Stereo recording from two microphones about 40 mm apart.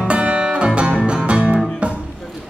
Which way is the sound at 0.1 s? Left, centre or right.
Right.